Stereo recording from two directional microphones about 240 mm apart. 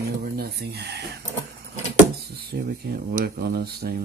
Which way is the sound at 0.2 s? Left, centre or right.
Right.